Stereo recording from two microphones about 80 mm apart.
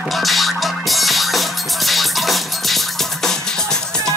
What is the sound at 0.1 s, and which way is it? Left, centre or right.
Music, centre.